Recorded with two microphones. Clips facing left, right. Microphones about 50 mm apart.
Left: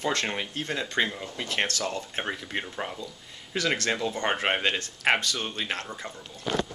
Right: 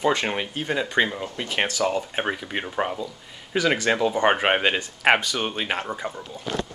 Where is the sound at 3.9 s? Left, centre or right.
Right.